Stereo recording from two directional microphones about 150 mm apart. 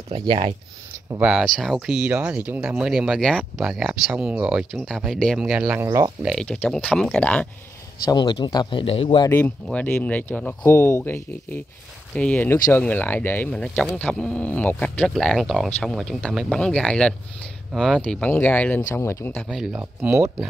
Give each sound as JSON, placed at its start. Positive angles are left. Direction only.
{"t": 1.2, "sound": "speech", "side_deg": 0}
{"t": 5.9, "sound": "speech", "side_deg": -30}
{"t": 6.2, "sound": "speech", "side_deg": 5}
{"t": 8.0, "sound": "speech", "side_deg": 25}
{"t": 9.3, "sound": "speech", "side_deg": 10}
{"t": 19.3, "sound": "speech", "side_deg": 0}
{"t": 19.8, "sound": "speech", "side_deg": -15}